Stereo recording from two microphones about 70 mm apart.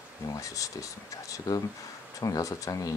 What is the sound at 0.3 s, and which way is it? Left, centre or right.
Speech, left.